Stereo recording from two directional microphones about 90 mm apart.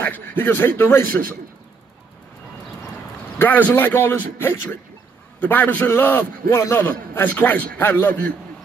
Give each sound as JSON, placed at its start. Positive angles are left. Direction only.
{"t": 0.0, "sound": "a man's voice", "side_deg": 20}
{"t": 3.3, "sound": "a man's voice", "side_deg": 20}